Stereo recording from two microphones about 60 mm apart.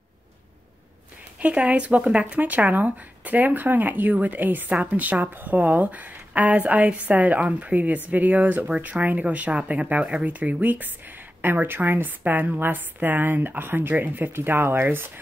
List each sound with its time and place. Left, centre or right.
1.4 s speech: right